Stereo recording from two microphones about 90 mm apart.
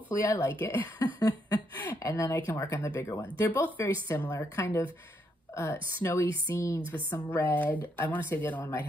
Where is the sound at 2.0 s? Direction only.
35° left (ahead or behind).